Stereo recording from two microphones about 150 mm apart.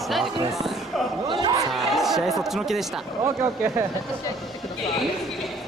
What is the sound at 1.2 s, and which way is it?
Speech, 30° right (ahead or behind).